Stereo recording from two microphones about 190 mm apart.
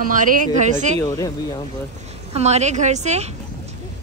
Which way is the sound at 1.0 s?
20° left (ahead or behind).